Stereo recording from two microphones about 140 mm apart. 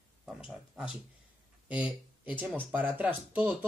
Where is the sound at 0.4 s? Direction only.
5° right (ahead or behind).